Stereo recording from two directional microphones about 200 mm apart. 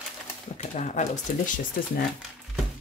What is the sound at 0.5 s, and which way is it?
Speech, 35° left (ahead or behind).